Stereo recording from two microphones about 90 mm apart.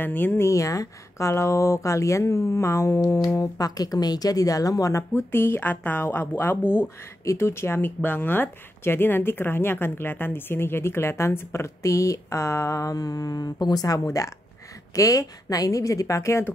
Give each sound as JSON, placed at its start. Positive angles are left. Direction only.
{"t": 0.0, "sound": "speech", "side_deg": 20}
{"t": 0.5, "sound": "speech", "side_deg": 35}